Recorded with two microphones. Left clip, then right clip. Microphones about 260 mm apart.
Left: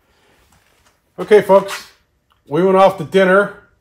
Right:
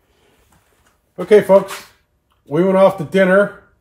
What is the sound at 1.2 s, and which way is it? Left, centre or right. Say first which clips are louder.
Speech: even; centre.